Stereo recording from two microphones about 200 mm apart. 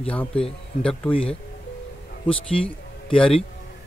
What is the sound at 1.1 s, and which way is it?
Speech, 25° left (ahead or behind).